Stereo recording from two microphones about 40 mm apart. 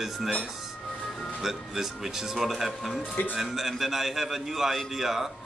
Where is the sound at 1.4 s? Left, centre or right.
Centre.